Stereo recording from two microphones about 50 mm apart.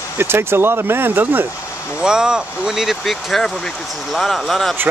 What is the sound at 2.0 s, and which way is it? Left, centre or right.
Speech, centre.